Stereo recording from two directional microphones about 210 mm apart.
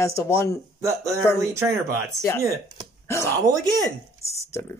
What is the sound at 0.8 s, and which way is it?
Speech, 15° right (ahead or behind).